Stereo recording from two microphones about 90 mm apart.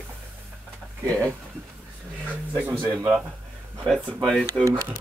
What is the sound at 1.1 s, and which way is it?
Speech, 15° left (ahead or behind).